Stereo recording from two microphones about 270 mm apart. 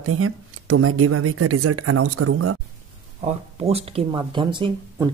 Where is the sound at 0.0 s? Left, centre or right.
Right.